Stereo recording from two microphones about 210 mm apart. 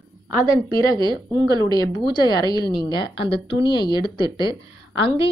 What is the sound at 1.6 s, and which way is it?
Speech, 20° left (ahead or behind).